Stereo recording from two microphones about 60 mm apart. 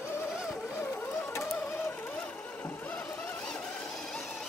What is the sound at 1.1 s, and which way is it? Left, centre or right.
Music, left.